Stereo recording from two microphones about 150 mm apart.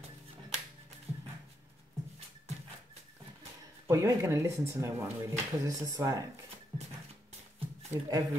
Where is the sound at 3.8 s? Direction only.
20° right (ahead or behind).